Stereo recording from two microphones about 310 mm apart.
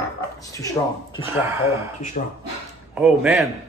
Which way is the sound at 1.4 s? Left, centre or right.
Centre.